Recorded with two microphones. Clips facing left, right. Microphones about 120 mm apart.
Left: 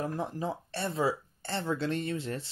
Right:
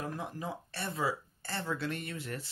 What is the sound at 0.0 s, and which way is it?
Speech, 30° left (ahead or behind).